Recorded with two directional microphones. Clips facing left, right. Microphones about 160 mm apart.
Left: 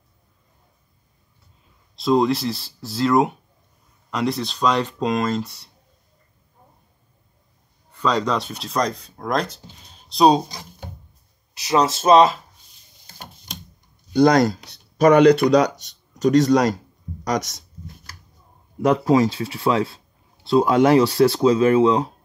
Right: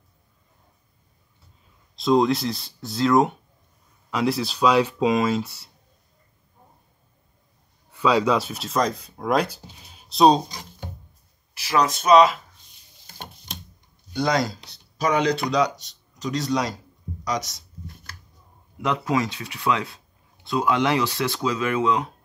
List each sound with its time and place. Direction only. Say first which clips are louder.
2.0 s speech: left 1 dB; centre (ahead or behind)
7.9 s speech: right 2 dB; 5° right (ahead or behind)
11.5 s speech: left 3 dB; 20° left (ahead or behind)
14.1 s speech: left 8 dB; 45° left (ahead or behind)
18.8 s speech: left 7 dB; 35° left (ahead or behind)